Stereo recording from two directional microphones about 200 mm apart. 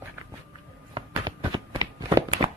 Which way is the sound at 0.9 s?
25° right (ahead or behind).